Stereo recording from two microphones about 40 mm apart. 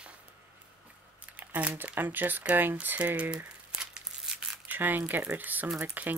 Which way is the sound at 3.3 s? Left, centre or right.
Right.